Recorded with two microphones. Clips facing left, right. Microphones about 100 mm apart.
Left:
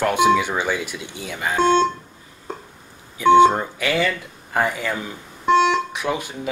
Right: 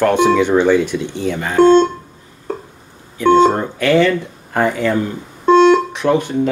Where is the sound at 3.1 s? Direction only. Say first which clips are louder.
Right 2 dB; 10° left (ahead or behind).